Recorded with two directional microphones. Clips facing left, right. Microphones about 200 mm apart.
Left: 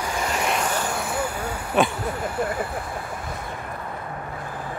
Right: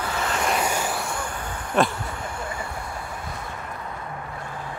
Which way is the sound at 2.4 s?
60° left (ahead or behind).